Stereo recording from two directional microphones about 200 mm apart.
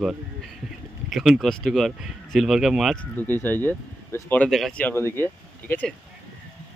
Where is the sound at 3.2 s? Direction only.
10° left (ahead or behind).